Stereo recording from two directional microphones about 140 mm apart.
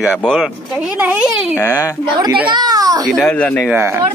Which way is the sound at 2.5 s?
30° right (ahead or behind).